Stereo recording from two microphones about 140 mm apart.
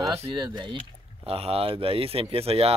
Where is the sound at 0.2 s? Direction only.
35° right (ahead or behind).